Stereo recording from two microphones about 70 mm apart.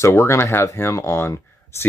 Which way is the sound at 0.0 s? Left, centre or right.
Left.